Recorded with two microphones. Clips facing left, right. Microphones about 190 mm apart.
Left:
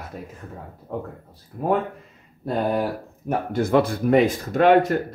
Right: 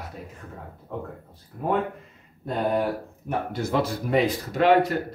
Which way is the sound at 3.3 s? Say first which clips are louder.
Left 6 dB; 50° left (ahead or behind).